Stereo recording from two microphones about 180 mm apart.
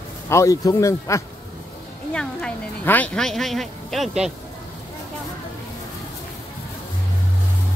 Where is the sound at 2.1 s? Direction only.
5° left (ahead or behind).